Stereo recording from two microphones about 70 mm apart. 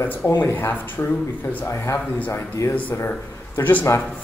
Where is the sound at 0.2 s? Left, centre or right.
Left.